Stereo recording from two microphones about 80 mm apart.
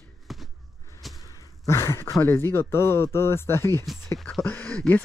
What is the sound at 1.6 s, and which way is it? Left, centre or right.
Speech, left.